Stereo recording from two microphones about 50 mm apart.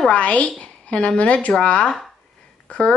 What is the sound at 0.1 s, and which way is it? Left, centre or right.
Speech, left.